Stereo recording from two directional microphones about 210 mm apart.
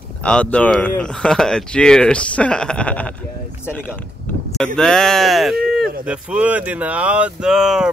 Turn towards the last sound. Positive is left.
turn(degrees=-5)  # may be behind; listen again after turning